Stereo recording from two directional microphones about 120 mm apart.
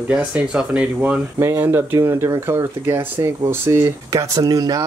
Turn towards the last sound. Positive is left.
turn(degrees=-30)  # may be behind; listen again after turning